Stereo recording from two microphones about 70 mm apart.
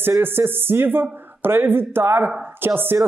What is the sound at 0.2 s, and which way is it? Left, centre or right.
Speech, right.